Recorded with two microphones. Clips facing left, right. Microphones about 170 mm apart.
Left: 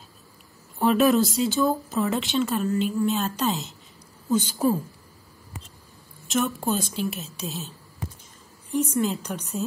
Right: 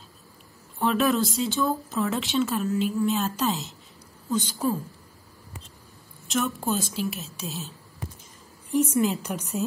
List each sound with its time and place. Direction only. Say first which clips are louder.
0.7 s speech: left 4 dB; 5° left (ahead or behind)
4.3 s a woman's voice: left 4 dB; 10° left (ahead or behind)
6.2 s speech: left 2 dB; centre (ahead or behind)